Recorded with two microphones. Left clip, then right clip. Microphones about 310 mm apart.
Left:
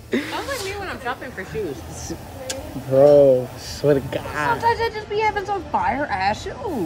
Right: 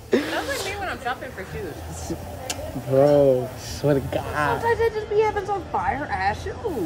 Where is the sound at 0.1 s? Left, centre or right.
Centre.